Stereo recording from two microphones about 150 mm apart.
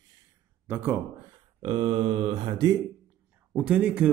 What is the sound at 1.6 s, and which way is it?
Speech, 35° right (ahead or behind).